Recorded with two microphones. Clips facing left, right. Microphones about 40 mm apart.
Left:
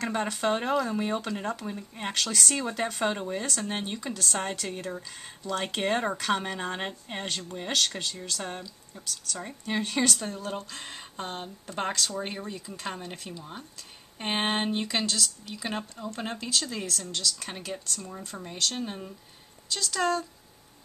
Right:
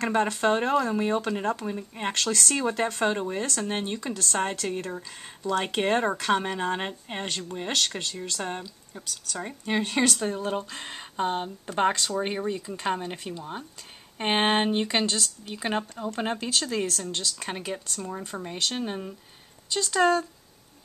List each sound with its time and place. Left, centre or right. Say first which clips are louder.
0.0 s speech: right 4 dB; centre
2.1 s speech: right 1 dB; centre
9.0 s speech: right 1 dB; centre
9.4 s speech: right 4 dB; centre